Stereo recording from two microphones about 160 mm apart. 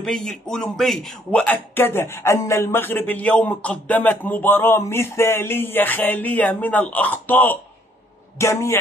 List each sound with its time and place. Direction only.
0.0 s a man's voice: centre (ahead or behind); by 8.7 s 20° left (ahead or behind)